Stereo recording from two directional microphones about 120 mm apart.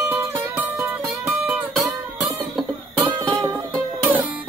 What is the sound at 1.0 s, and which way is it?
Music, centre (ahead or behind).